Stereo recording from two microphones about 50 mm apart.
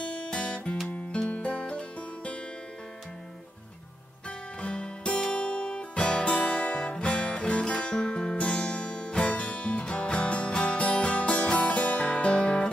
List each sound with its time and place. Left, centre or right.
0.0 s music: left
4.6 s music: left